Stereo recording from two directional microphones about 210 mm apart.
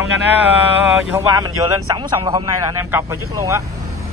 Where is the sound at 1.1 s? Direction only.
20° right (ahead or behind).